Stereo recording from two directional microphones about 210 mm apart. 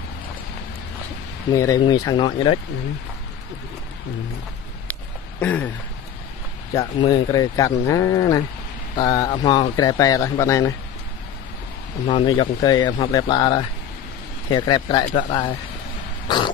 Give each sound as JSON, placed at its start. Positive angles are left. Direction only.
{"t": 1.5, "sound": "speech", "side_deg": 15}
{"t": 5.4, "sound": "speech", "side_deg": 5}
{"t": 6.7, "sound": "speech", "side_deg": 20}
{"t": 12.1, "sound": "speech", "side_deg": 20}